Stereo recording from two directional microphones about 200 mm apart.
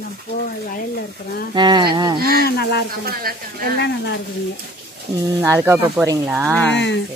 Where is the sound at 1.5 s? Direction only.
20° right (ahead or behind).